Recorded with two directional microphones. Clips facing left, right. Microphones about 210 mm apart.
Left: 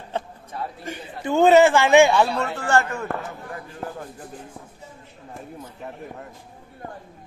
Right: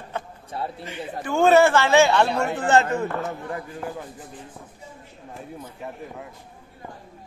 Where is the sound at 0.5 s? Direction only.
30° right (ahead or behind).